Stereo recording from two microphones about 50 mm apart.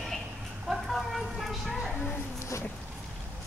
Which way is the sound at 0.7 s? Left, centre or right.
Centre.